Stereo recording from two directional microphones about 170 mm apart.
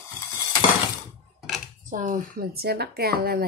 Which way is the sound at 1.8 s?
50° right (ahead or behind).